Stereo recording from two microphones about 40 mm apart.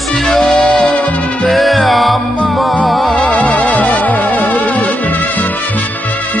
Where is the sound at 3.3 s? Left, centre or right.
Left.